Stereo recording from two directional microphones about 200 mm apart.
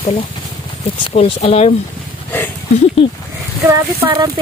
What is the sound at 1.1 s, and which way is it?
Speech, 30° left (ahead or behind).